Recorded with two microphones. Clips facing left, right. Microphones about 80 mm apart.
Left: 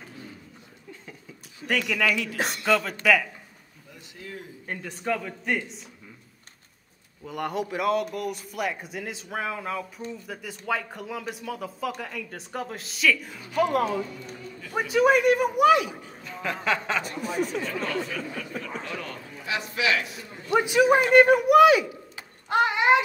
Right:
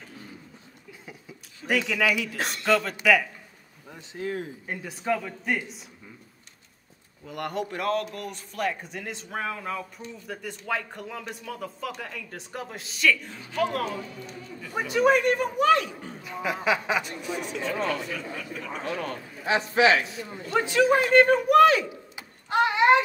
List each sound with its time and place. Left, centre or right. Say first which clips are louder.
1.7 s speech: right 1 dB; centre
3.9 s a sound: right 10 dB; right
4.6 s speech: even; centre
7.2 s speech: left 2 dB; centre
14.6 s speech: left 1 dB; centre
16.2 s speech: right 2 dB; centre
17.0 s speech: left 4 dB; left
17.8 s speech: even; centre
18.7 s a man's voice: right 3 dB; right
20.4 s speech: left 2 dB; centre
22.5 s a sound: right 1 dB; centre